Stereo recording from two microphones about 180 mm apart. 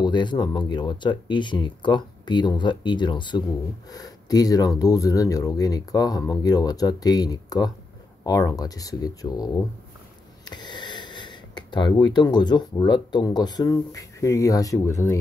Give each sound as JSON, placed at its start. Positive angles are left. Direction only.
{"t": 0.0, "sound": "speech", "side_deg": 25}